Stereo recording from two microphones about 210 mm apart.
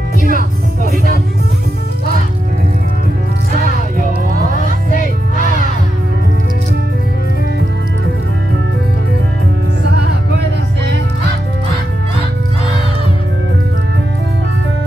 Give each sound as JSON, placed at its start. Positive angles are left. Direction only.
{"t": 0.2, "sound": "music", "side_deg": -45}